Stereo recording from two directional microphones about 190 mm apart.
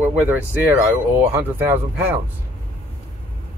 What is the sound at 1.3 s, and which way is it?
Speech, 10° right (ahead or behind).